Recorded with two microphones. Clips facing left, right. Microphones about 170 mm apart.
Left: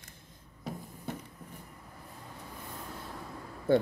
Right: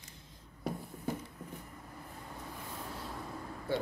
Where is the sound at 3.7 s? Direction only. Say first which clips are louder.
Left 9 dB; 55° left (ahead or behind).